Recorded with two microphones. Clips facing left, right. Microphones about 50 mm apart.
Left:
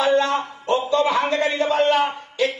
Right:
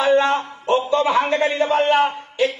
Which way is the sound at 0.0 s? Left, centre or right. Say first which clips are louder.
Right 2 dB; right.